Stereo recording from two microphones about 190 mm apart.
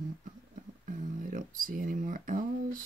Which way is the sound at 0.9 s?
45° right (ahead or behind).